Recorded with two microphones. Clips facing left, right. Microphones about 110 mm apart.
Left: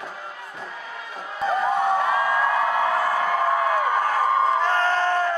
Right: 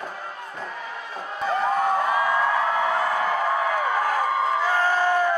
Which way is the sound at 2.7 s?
20° right (ahead or behind).